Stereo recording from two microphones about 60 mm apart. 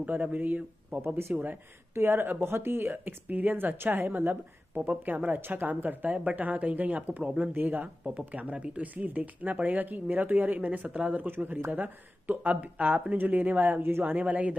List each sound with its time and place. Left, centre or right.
0.0 s speech: right
1.0 s speech: right
1.3 s speech: right
11.2 s speech: right